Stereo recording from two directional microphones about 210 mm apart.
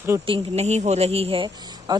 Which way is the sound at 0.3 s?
30° right (ahead or behind).